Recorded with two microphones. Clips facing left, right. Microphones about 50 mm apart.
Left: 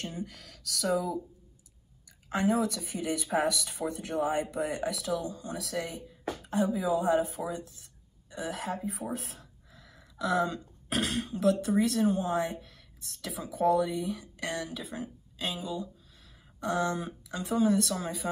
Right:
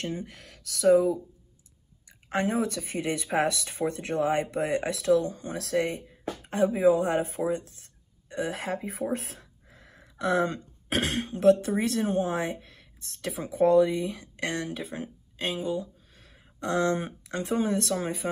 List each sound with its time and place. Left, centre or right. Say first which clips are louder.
0.0 s speech: right 4 dB; right
2.2 s speech: right 1 dB; right
8.6 s speech: right 2 dB; right
9.1 s speech: right 6 dB; right
9.4 s speech: right 1 dB; right
16.6 s speech: right 4 dB; right
18.2 s speech: right 2 dB; centre